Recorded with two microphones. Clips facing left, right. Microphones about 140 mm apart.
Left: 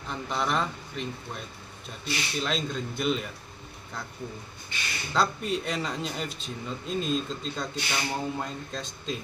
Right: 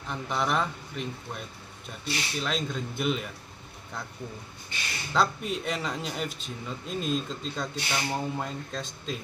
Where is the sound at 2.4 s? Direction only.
5° right (ahead or behind).